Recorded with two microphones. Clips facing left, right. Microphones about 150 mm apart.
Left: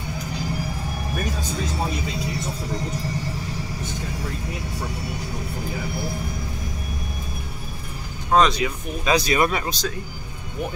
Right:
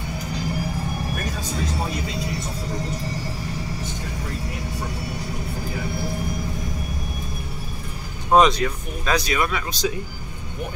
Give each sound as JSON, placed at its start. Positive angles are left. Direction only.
{"t": 8.3, "sound": "speech", "side_deg": -15}
{"t": 8.5, "sound": "speech", "side_deg": 10}
{"t": 9.1, "sound": "speech", "side_deg": 35}
{"t": 9.7, "sound": "speech", "side_deg": -10}